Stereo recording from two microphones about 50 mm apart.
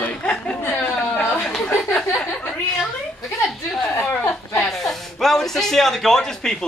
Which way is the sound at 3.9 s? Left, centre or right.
Left.